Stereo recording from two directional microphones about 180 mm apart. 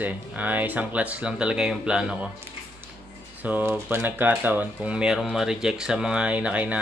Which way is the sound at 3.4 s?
10° right (ahead or behind).